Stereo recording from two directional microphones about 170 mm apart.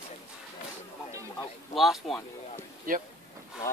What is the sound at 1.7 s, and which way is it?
Speech, centre (ahead or behind).